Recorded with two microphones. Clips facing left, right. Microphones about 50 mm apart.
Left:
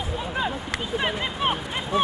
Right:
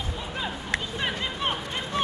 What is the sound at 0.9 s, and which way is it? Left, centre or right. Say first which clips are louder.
Speech: left 3 dB; centre.